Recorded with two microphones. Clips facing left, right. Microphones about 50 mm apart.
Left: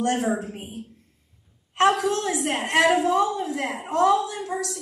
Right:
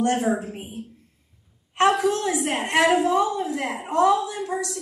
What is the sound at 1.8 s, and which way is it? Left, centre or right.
A woman's voice, centre.